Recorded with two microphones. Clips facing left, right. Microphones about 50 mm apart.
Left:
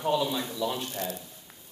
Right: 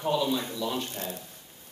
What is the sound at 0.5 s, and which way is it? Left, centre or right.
Speech, left.